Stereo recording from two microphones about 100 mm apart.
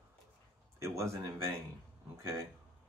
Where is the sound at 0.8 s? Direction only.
30° right (ahead or behind).